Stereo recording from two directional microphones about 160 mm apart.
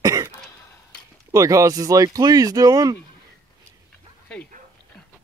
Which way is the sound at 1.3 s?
20° right (ahead or behind).